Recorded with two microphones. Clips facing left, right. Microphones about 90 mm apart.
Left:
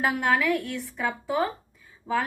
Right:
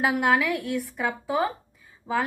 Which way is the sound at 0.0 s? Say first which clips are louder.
Right 2 dB; 15° right (ahead or behind).